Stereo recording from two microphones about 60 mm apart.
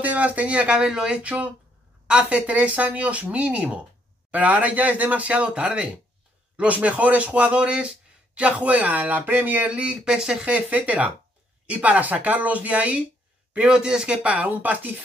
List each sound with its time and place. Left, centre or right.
0.0 s speech: right
9.7 s speech: centre